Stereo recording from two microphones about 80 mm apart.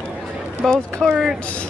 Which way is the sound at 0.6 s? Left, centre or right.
Centre.